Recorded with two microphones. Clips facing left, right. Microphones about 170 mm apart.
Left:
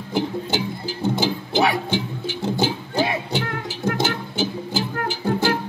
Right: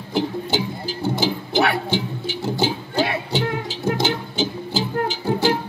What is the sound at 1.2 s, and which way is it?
Music, 15° left (ahead or behind).